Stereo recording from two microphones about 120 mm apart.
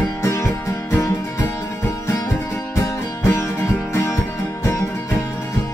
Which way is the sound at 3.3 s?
20° left (ahead or behind).